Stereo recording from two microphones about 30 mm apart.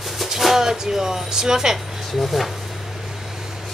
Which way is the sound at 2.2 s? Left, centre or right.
Centre.